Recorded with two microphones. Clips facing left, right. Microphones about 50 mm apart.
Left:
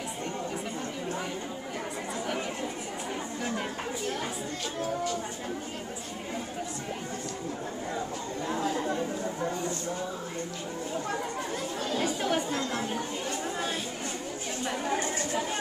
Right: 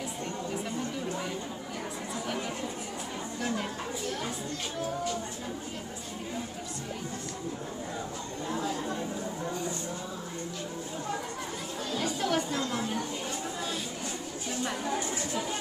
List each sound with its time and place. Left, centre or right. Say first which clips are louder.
8.5 s chatter: left 2 dB; left
11.9 s chatter: left 1 dB; left
12.5 s chatter: even; left
14.9 s a sound: left 2 dB; left